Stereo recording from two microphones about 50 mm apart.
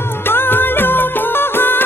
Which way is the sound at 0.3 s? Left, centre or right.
Left.